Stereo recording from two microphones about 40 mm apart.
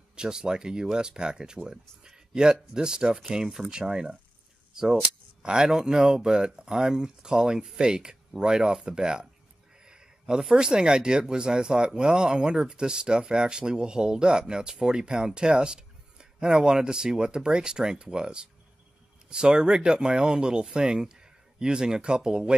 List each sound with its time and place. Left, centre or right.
0.1 s speech: centre
5.4 s speech: centre
9.8 s a sound: right
10.5 s speech: right